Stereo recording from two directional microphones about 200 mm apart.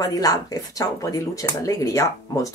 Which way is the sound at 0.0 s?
20° left (ahead or behind).